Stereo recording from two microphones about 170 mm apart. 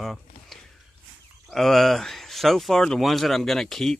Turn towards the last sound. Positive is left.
turn(degrees=0)  # may be behind; listen again after turning